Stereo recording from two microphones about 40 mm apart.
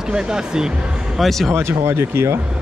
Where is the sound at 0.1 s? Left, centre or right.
Centre.